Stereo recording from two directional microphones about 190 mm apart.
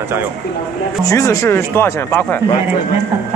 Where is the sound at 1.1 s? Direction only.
15° left (ahead or behind).